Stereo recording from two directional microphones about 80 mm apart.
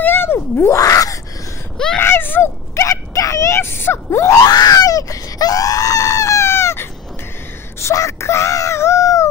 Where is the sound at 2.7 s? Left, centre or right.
Left.